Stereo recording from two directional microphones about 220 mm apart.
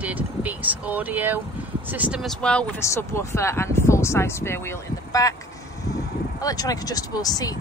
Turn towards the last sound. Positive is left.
turn(degrees=15)  # may be behind; listen again after turning